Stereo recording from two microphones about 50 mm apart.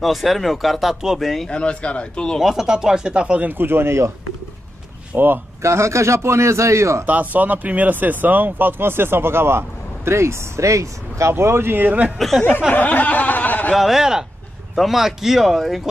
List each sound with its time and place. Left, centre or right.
0.0 s speech: centre
1.5 s speech: left
2.4 s speech: centre
3.4 s speech: right
5.1 s speech: right
5.6 s a man's voice: right
7.1 s speech: right
11.3 s speech: right
12.2 s speech: centre
12.7 s a sound: left
13.7 s speech: centre